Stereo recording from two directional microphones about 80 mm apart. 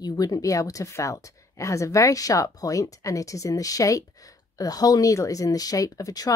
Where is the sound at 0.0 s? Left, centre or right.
Left.